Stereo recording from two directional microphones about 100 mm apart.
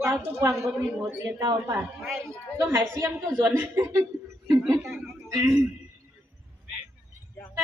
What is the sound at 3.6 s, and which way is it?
Speech, 35° right (ahead or behind).